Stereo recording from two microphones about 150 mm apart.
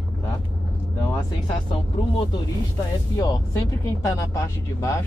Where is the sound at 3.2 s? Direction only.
25° left (ahead or behind).